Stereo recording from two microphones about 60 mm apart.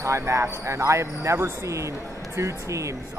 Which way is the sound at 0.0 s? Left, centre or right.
Right.